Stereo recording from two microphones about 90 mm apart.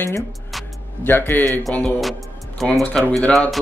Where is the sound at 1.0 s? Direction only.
25° left (ahead or behind).